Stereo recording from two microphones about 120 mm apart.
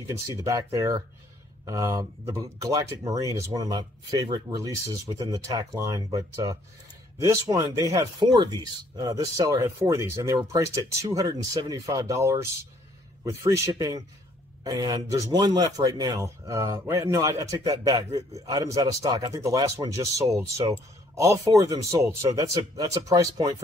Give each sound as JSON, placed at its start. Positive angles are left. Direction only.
{"t": 0.0, "sound": "speech", "side_deg": -25}